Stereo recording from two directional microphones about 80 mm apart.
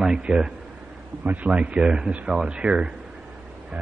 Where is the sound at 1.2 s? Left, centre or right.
Centre.